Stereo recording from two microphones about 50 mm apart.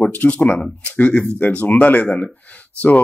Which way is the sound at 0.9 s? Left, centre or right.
Left.